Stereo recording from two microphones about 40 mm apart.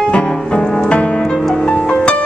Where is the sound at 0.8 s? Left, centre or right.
Left.